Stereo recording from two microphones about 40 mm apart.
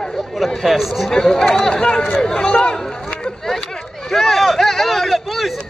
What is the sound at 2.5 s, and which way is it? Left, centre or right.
Speech, left.